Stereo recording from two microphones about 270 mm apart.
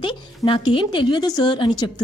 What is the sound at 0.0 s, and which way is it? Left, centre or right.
Speech, centre.